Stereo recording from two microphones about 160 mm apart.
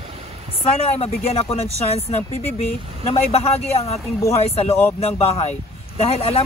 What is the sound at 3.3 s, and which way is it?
Speech, 40° left (ahead or behind).